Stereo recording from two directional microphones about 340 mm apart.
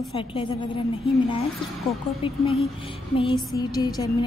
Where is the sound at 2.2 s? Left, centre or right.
Centre.